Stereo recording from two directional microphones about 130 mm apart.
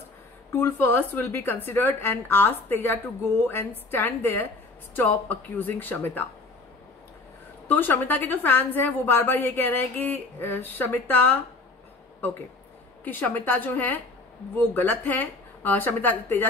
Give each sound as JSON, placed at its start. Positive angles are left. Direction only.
{"t": 0.5, "sound": "a woman's voice", "side_deg": 15}
{"t": 7.6, "sound": "a woman's voice", "side_deg": 15}
{"t": 13.0, "sound": "a woman's voice", "side_deg": 15}